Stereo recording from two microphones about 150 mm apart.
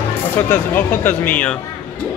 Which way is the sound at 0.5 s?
15° left (ahead or behind).